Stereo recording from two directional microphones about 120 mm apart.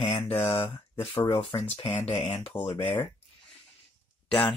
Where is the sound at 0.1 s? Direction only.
20° left (ahead or behind).